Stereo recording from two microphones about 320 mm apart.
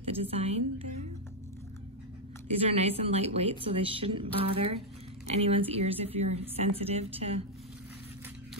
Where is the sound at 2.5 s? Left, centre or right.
Centre.